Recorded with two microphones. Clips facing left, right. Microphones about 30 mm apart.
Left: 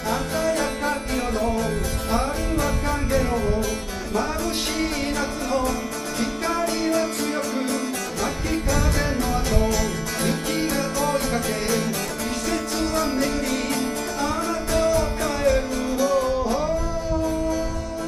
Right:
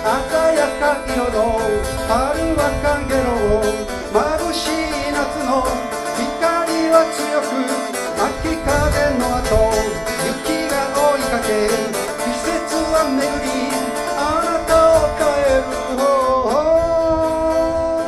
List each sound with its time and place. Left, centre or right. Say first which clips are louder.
0.0 s music: right 8 dB; right
2.6 s music: right 7 dB; right
6.4 s music: right 8 dB; right
9.0 s music: right 7 dB; right
11.0 s music: right 9 dB; right
12.9 s music: right 7 dB; right